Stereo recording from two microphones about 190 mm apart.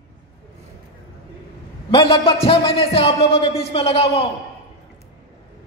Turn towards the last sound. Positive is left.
turn(degrees=30)  # may be behind; listen again after turning